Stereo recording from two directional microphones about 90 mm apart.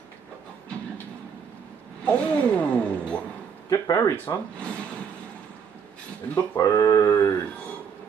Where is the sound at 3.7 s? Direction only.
40° left (ahead or behind).